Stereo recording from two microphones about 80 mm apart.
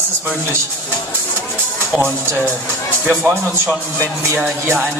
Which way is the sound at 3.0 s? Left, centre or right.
Centre.